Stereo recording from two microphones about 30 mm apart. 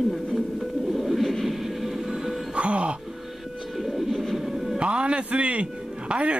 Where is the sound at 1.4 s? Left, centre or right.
Centre.